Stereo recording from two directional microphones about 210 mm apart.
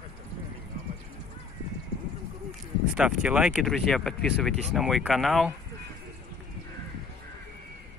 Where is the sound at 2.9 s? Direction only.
5° right (ahead or behind).